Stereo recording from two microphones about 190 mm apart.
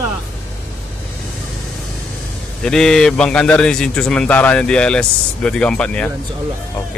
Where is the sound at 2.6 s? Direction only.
5° left (ahead or behind).